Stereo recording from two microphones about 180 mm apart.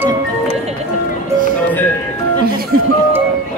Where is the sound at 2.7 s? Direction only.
55° right (ahead or behind).